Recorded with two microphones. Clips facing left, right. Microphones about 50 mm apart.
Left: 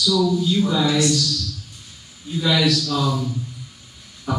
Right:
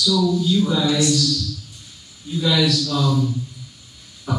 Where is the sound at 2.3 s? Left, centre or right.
Centre.